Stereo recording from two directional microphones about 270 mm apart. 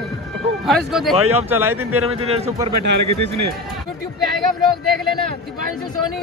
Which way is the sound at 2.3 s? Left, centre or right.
Right.